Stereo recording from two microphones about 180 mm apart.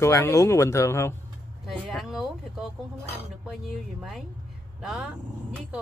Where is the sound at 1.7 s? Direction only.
Centre (ahead or behind).